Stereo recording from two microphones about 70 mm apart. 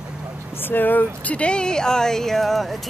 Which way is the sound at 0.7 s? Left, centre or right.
Left.